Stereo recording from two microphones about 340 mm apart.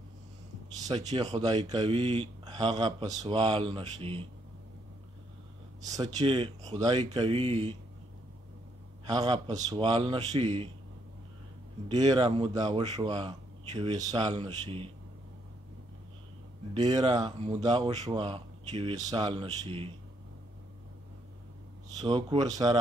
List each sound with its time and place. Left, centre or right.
0.8 s speech: centre
5.9 s speech: centre
9.0 s speech: centre
11.9 s speech: centre
16.7 s speech: centre
22.0 s speech: centre